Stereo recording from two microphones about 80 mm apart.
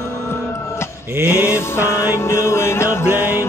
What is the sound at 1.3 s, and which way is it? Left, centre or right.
Mantra, left.